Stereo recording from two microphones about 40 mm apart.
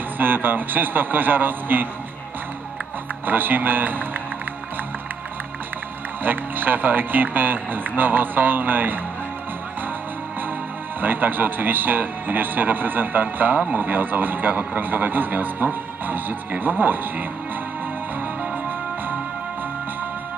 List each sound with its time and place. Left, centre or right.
0.2 s speech: right
3.3 s speech: right
6.2 s speech: right
11.0 s speech: right